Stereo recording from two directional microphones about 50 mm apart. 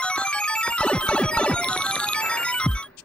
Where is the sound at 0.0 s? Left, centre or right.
Left.